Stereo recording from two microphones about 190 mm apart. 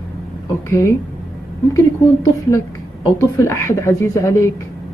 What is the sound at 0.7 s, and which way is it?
Speech, 15° left (ahead or behind).